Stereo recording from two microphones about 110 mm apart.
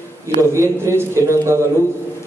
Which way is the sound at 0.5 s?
25° right (ahead or behind).